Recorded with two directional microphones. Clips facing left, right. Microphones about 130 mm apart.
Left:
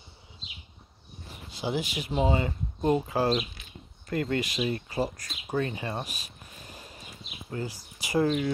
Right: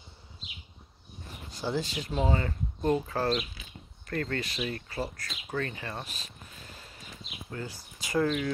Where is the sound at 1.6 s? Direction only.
15° left (ahead or behind).